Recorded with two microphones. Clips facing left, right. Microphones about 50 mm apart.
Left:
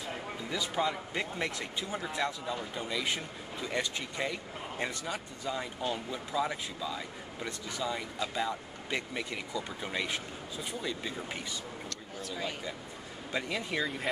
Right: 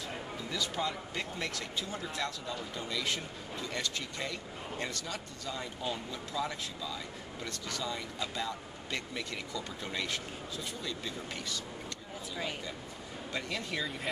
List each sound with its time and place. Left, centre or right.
0.5 s speech: centre
13.3 s speech: centre